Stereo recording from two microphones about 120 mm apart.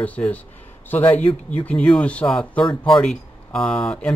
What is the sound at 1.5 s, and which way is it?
Speech, 10° left (ahead or behind).